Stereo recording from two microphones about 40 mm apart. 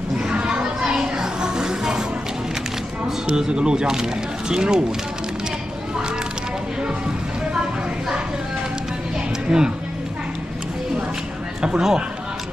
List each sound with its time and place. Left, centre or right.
0.3 s children playing: right
3.3 s speech: centre
9.5 s speech: centre
11.6 s speech: centre